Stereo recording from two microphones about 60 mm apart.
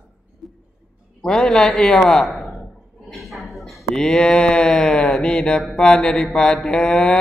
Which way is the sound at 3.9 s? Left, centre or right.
Centre.